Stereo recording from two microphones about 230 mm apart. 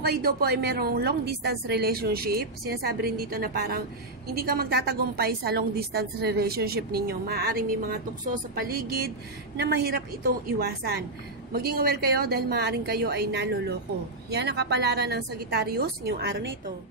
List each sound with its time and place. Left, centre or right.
0.0 s a woman's voice: right